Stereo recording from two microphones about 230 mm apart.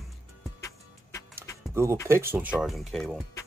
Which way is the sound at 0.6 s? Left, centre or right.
Centre.